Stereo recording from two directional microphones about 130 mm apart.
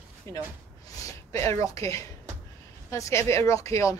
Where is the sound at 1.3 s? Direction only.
20° left (ahead or behind).